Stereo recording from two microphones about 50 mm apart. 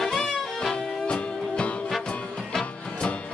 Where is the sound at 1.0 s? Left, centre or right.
Left.